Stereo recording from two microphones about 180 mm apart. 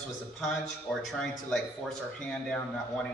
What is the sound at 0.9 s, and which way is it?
Speech, 10° left (ahead or behind).